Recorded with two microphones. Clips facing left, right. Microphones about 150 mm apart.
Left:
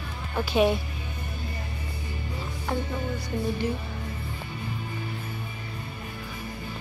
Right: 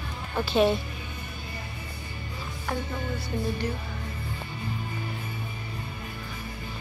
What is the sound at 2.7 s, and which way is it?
Music, 15° left (ahead or behind).